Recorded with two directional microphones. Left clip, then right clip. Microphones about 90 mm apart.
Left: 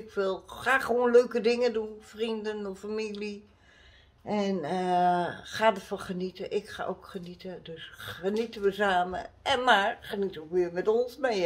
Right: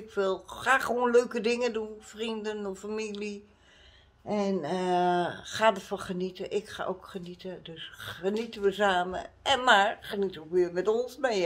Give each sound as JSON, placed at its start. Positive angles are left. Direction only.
{"t": 0.1, "sound": "speech", "side_deg": -35}
{"t": 4.3, "sound": "speech", "side_deg": -10}